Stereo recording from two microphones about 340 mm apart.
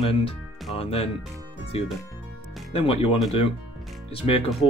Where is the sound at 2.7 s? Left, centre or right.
Centre.